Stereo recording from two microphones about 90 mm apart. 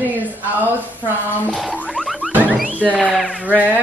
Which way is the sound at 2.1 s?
15° right (ahead or behind).